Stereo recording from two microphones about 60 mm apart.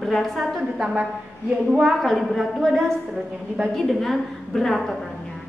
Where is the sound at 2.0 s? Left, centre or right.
Centre.